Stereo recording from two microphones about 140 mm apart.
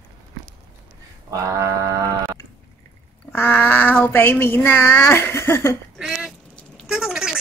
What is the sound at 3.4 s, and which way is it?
Speech, 15° left (ahead or behind).